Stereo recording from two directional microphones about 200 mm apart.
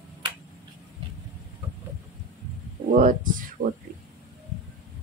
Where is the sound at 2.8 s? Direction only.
40° right (ahead or behind).